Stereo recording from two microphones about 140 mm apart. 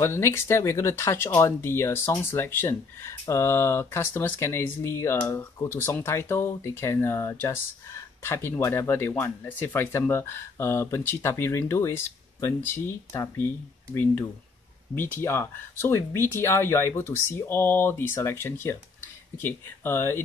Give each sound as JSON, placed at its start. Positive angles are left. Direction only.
{"t": 0.0, "sound": "speech", "side_deg": 20}
{"t": 15.0, "sound": "speech", "side_deg": 15}